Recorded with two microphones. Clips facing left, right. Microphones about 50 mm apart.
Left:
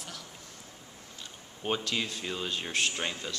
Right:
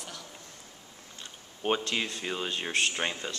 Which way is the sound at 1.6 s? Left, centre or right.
Centre.